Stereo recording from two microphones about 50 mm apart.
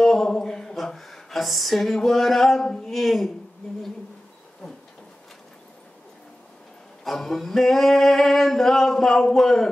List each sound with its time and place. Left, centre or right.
0.0 s a sound: centre
2.0 s singing: centre
7.1 s singing: centre